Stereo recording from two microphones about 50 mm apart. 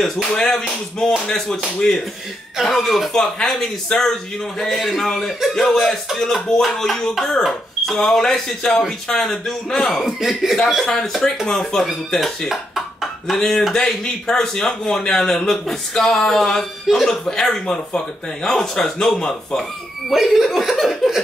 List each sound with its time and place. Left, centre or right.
0.4 s speech: centre
4.6 s speech: centre
10.0 s speech: centre
12.2 s a sound: centre
13.4 s speech: centre